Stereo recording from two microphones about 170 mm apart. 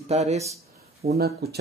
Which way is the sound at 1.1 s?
65° right (ahead or behind).